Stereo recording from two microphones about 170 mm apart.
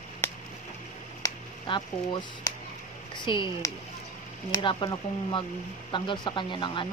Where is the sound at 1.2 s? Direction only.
20° left (ahead or behind).